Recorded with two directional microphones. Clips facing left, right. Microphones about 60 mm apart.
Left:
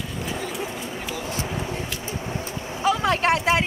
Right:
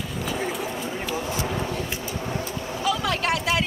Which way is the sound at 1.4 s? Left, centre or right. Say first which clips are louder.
Right 2 dB; centre.